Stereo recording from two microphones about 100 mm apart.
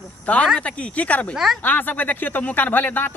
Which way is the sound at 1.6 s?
15° left (ahead or behind).